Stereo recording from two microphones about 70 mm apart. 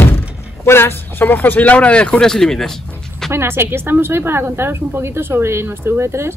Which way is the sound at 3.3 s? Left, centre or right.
Right.